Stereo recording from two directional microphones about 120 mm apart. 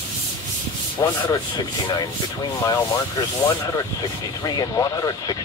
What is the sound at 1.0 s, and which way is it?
Speech, 30° left (ahead or behind).